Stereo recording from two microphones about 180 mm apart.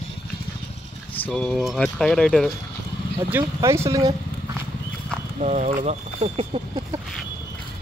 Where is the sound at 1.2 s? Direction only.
5° left (ahead or behind).